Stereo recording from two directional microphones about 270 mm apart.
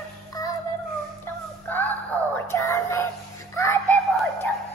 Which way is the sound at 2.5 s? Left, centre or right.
Centre.